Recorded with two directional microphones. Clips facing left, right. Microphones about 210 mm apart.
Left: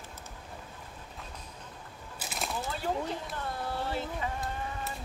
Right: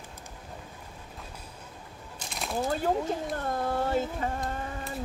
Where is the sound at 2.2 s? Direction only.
5° left (ahead or behind).